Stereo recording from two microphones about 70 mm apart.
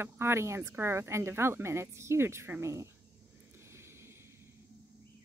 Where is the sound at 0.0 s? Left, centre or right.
Right.